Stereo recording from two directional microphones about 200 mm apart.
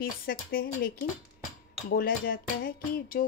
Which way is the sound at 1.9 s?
45° left (ahead or behind).